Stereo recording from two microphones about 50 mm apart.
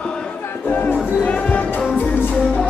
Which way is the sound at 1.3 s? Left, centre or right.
Left.